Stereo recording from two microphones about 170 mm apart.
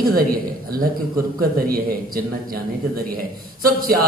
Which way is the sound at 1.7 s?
60° right (ahead or behind).